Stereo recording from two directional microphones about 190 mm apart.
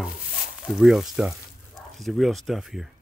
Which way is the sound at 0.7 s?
Centre (ahead or behind).